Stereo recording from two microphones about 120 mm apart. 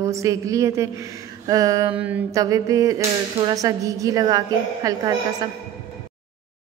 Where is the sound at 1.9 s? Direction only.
10° right (ahead or behind).